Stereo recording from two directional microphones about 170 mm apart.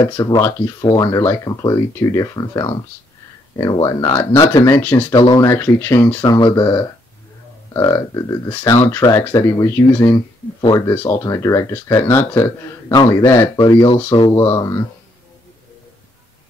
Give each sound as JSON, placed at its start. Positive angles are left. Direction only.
{"t": 0.1, "sound": "a man's voice", "side_deg": 15}
{"t": 5.1, "sound": "a man's voice", "side_deg": 25}
{"t": 5.4, "sound": "speech", "side_deg": 15}
{"t": 7.7, "sound": "a man's voice", "side_deg": 20}
{"t": 14.4, "sound": "a man's voice", "side_deg": 20}